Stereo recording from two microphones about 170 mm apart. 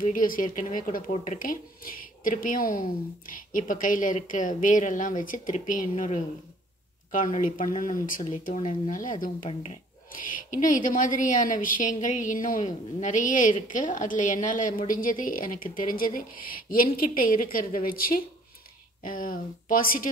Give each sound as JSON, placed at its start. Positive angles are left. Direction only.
{"t": 0.0, "sound": "speech", "side_deg": 55}
{"t": 9.5, "sound": "speech", "side_deg": 40}
{"t": 10.2, "sound": "speech", "side_deg": 50}